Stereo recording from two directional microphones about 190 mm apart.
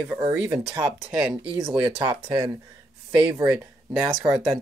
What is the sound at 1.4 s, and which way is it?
Speech, 20° right (ahead or behind).